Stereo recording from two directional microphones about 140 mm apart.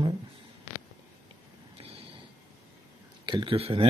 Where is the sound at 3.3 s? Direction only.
35° right (ahead or behind).